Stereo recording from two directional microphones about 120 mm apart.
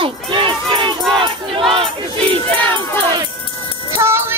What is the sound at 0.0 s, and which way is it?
Crowd, 45° right (ahead or behind).